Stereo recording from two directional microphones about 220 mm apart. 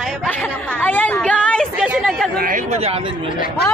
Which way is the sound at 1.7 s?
5° right (ahead or behind).